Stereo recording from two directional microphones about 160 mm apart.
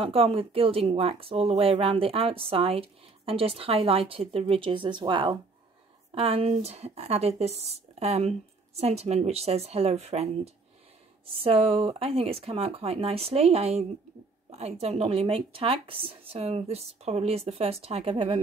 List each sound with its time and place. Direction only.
0.0 s speech: 35° right (ahead or behind)